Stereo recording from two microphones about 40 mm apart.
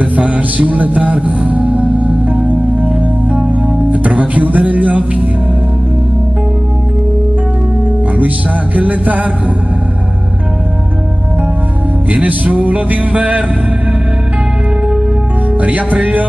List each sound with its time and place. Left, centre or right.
0.0 s music: right
8.7 s music: right
12.1 s music: right
15.6 s music: right